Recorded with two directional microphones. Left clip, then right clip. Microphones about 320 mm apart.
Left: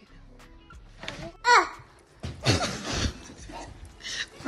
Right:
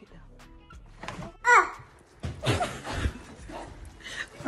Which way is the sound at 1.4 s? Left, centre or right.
Left.